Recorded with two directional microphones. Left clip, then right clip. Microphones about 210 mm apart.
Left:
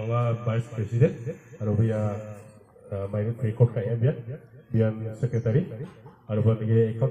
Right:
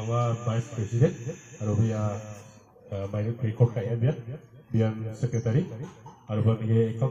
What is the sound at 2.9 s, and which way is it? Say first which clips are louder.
A man's voice: left 2 dB; 20° left (ahead or behind).